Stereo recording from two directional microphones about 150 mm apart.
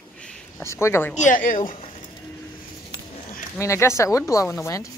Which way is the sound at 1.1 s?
55° left (ahead or behind).